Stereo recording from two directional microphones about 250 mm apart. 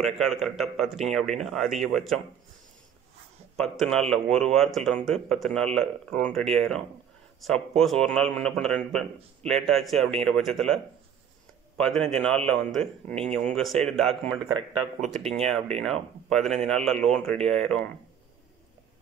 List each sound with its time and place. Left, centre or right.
0.0 s a man's voice: centre
3.5 s a man's voice: centre
14.5 s speech: right
15.0 s a man's voice: centre